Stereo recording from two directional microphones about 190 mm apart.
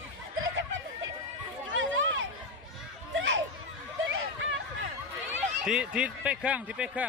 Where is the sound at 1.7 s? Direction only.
90° right.